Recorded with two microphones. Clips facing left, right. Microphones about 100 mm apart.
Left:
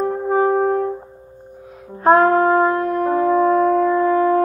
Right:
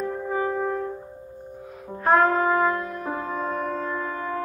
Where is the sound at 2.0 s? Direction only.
40° left (ahead or behind).